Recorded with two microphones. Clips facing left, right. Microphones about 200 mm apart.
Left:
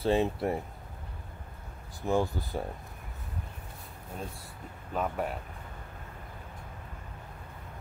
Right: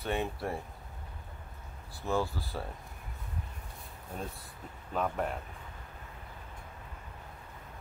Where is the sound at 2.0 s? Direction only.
15° left (ahead or behind).